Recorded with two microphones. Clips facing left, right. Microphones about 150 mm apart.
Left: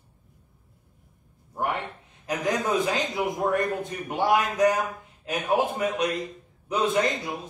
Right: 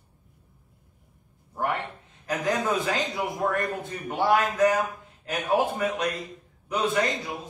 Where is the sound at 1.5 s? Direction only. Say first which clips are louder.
Even; 20° left (ahead or behind).